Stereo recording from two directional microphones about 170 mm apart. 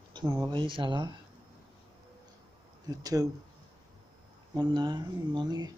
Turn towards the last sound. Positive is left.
turn(degrees=-25)  # may be behind; listen again after turning